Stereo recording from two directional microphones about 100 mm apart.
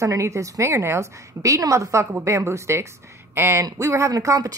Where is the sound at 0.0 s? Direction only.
30° right (ahead or behind).